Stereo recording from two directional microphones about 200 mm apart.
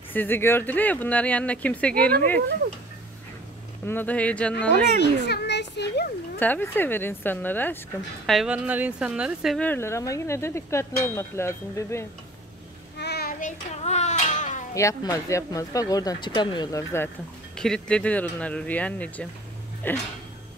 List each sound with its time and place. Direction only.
0.1 s a woman's voice: 10° left (ahead or behind)
3.8 s a woman's voice: 10° left (ahead or behind)
5.2 s a child's voice: 60° left (ahead or behind)
6.4 s a woman's voice: 10° left (ahead or behind)
8.3 s a woman's voice: 5° right (ahead or behind); by 12.1 s 15° left (ahead or behind)
12.9 s child singing: 55° left (ahead or behind); by 14.6 s 35° left (ahead or behind)
14.7 s a woman's voice: 15° left (ahead or behind)
17.6 s a woman's voice: 5° left (ahead or behind)